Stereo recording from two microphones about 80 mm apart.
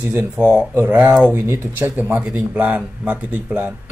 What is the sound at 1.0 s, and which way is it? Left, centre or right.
Speech, centre.